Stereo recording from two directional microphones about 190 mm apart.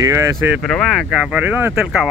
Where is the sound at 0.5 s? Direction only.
Centre (ahead or behind).